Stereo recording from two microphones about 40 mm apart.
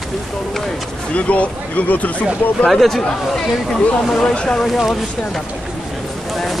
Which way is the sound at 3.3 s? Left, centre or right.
Centre.